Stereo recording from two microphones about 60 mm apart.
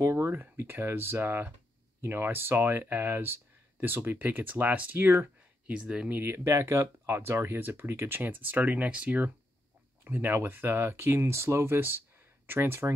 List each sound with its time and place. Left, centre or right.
0.0 s speech: right
5.7 s speech: centre
6.0 s speech: right
6.3 s speech: right
7.2 s speech: right
8.2 s speech: right
10.0 s speech: right